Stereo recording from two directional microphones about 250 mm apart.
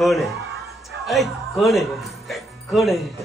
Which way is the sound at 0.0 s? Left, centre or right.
Centre.